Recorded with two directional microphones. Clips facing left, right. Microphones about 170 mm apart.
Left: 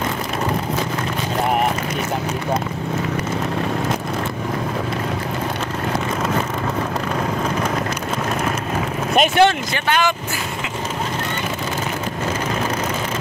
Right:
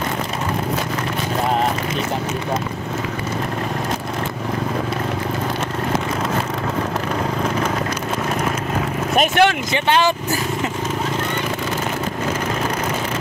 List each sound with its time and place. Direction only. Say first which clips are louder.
9.1 s speech: left 1 dB; 5° right (ahead or behind)
9.8 s speech: right 2 dB; 30° right (ahead or behind)